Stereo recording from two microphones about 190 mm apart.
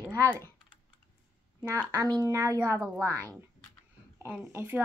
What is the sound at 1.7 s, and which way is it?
Speech, 15° right (ahead or behind).